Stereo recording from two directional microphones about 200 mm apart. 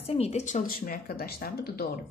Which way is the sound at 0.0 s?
30° left (ahead or behind).